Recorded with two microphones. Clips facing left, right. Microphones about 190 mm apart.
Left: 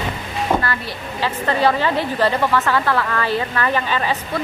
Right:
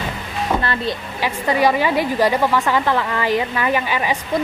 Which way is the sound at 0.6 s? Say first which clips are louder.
Right 3 dB; 15° right (ahead or behind).